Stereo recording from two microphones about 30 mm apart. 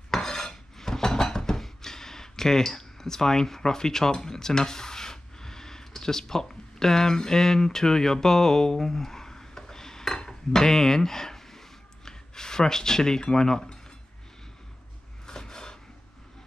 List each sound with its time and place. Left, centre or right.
0.1 s dishes: centre
10.1 s cutlery: left
15.2 s a sound: left